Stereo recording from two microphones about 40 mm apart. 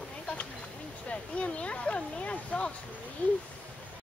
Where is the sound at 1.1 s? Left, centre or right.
Left.